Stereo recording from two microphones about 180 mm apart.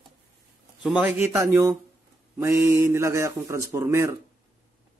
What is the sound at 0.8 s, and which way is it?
Speech, 10° right (ahead or behind).